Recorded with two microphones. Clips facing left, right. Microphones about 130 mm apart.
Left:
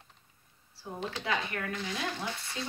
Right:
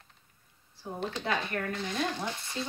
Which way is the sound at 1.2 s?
40° right (ahead or behind).